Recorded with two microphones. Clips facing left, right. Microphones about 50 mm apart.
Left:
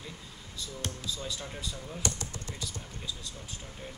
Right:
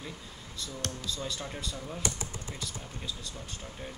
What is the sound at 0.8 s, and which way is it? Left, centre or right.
Speech, centre.